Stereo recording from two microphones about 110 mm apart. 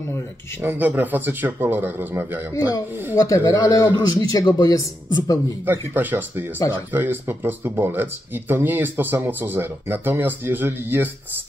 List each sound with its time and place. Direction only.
0.6 s a man's voice: 15° right (ahead or behind)
2.5 s a man's voice: 35° left (ahead or behind)
5.7 s a man's voice: 15° right (ahead or behind)